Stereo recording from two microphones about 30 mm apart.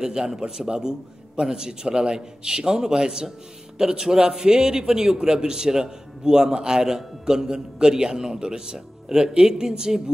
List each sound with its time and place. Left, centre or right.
0.0 s a man's voice: centre
6.9 s a man's voice: centre